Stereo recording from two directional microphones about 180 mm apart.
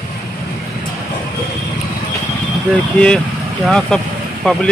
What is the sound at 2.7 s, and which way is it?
Speech, 5° left (ahead or behind).